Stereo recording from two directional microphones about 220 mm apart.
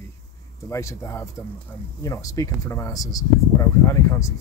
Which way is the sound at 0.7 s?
15° left (ahead or behind).